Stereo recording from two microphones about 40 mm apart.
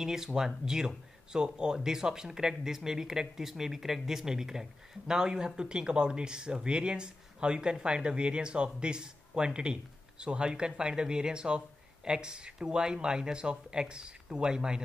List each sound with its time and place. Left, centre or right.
0.0 s speech: centre